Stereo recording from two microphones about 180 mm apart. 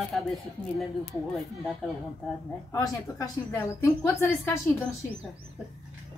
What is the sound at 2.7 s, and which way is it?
A woman's voice, 20° left (ahead or behind).